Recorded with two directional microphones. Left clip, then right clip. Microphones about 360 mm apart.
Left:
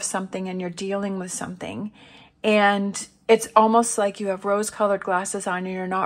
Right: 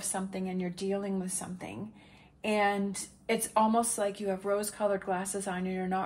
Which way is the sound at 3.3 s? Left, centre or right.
Centre.